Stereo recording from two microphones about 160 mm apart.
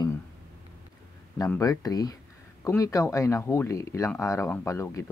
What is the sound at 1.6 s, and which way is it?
Speech, 20° left (ahead or behind).